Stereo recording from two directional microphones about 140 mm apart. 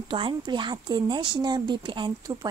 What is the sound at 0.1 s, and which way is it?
Speech, 35° right (ahead or behind).